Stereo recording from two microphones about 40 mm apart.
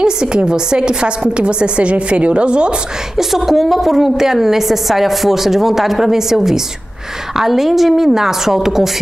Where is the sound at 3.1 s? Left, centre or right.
Centre.